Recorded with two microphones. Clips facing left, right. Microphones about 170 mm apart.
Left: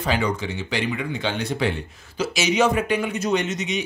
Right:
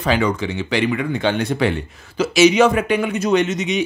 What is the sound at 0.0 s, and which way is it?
Speech, 90° right.